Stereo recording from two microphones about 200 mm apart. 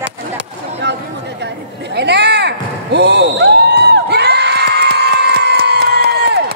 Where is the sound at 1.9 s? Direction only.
55° right (ahead or behind).